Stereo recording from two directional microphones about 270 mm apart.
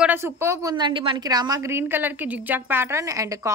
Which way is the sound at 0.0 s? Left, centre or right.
Centre.